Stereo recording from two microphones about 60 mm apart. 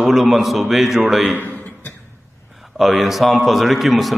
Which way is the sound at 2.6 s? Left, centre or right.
Centre.